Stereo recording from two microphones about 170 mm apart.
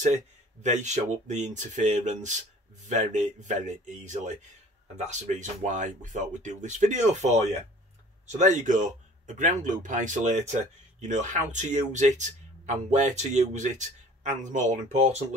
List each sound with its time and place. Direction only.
0.0 s speech: 45° right (ahead or behind)